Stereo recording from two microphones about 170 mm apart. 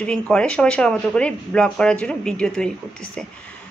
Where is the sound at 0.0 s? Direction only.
5° left (ahead or behind).